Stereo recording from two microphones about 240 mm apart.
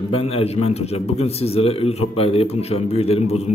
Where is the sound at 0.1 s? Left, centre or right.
Left.